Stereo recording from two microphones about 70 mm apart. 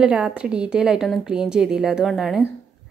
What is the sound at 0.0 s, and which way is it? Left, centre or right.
A woman's voice, centre.